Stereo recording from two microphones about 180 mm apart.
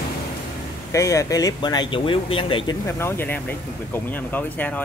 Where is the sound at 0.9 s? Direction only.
15° left (ahead or behind).